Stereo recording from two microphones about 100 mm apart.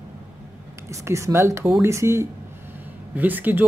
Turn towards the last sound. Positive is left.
turn(degrees=-20)  # may be behind; listen again after turning